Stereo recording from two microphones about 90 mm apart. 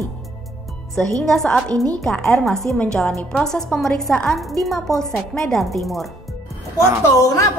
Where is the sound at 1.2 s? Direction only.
5° left (ahead or behind).